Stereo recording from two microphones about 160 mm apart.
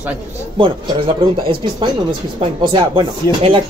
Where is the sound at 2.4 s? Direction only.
30° right (ahead or behind).